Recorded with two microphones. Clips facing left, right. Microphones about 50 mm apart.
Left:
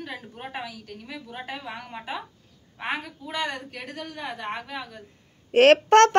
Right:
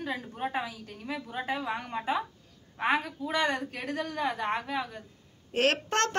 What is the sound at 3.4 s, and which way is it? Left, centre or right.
Speech, right.